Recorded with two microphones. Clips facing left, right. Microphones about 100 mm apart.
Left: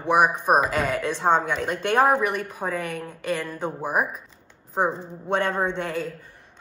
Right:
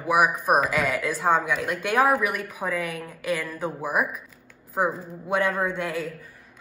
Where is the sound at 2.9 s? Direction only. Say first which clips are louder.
Even; 5° right (ahead or behind).